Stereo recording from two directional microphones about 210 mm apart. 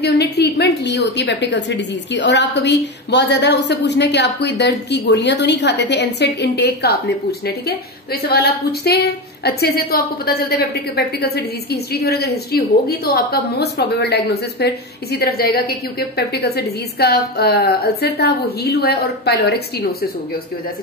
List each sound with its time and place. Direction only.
0.0 s a woman's voice: 50° left (ahead or behind)